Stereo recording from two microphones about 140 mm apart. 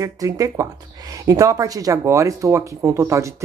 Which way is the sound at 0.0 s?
25° right (ahead or behind).